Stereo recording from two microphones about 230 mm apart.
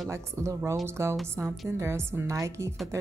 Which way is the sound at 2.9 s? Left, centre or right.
Centre.